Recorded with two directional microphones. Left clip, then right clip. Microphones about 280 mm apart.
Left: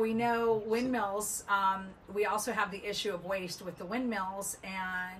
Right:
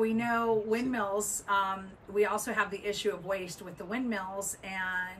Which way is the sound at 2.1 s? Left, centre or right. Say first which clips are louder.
Right 2 dB; centre.